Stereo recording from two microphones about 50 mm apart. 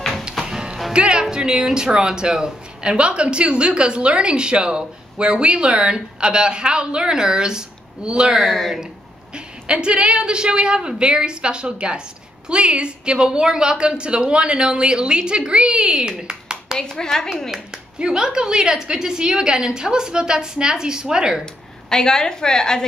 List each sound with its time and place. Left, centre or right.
0.5 s music: centre
0.9 s speech: centre
8.3 s speech: centre
9.3 s speech: right
16.7 s a woman's voice: centre
17.5 s a woman's voice: centre
21.8 s a woman's voice: centre